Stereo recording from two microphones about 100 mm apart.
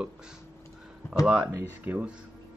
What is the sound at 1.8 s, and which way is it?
Speech, 15° right (ahead or behind).